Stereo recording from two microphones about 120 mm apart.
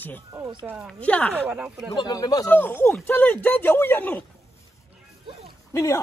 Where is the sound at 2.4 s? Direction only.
15° left (ahead or behind).